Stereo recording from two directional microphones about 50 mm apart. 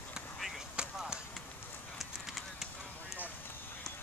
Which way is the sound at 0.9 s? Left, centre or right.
Centre.